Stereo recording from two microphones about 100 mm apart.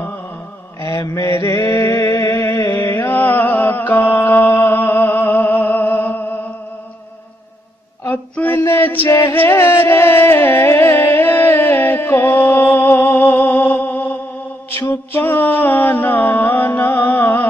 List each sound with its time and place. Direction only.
0.7 s mantra: 35° left (ahead or behind)
8.0 s female singing: 20° left (ahead or behind)
9.3 s music: 20° left (ahead or behind)
14.7 s mantra: 25° left (ahead or behind)